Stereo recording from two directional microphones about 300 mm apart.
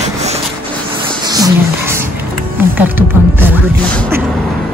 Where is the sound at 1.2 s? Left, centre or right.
Centre.